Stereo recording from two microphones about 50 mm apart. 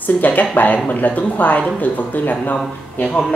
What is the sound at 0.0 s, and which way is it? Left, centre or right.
Speech, left.